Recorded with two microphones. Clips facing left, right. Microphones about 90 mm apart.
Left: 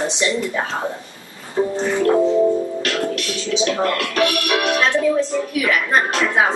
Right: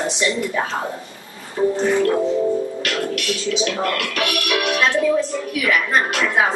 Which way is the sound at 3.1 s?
30° left (ahead or behind).